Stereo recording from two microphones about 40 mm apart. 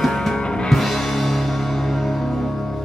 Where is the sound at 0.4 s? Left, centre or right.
Left.